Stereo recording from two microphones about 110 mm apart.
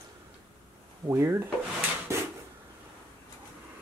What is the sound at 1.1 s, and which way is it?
Speech, 25° right (ahead or behind).